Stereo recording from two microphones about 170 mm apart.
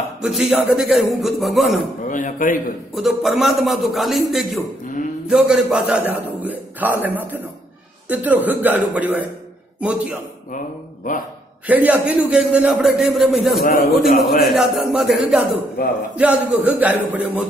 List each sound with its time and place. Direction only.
0.2 s a man's voice: centre (ahead or behind)
2.0 s a man's voice: 50° left (ahead or behind)
2.9 s a man's voice: centre (ahead or behind)
8.1 s a sound: 10° right (ahead or behind)
11.6 s a man's voice: 10° right (ahead or behind)
14.0 s speech: 60° left (ahead or behind)
14.4 s a man's voice: centre (ahead or behind)
16.2 s a sound: 10° right (ahead or behind)